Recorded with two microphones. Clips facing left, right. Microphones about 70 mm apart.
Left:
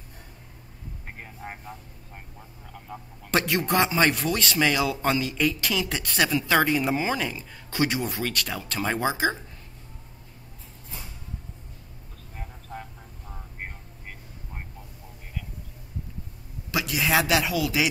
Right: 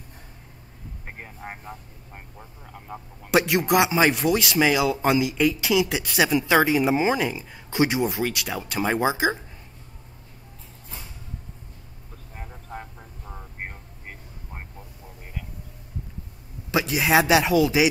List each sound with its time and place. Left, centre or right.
1.0 s speech: centre
12.4 s vehicle: centre
16.7 s a sound: right
17.0 s speech: centre